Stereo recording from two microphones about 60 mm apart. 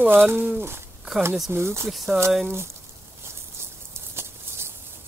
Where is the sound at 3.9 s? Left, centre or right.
Right.